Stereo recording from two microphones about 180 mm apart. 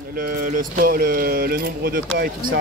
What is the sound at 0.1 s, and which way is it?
Speech, 50° right (ahead or behind).